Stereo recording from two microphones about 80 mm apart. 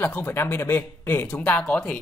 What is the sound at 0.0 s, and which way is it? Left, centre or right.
Speech, left.